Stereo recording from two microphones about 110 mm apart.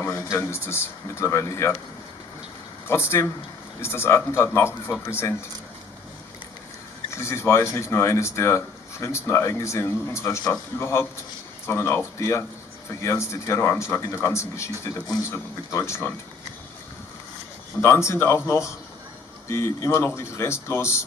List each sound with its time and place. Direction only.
0.0 s speech: 25° left (ahead or behind)
2.9 s speech: 20° left (ahead or behind)
7.2 s speech: 25° left (ahead or behind)
17.8 s speech: 25° left (ahead or behind)